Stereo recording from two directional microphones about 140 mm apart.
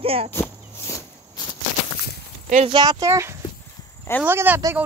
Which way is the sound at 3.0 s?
20° right (ahead or behind).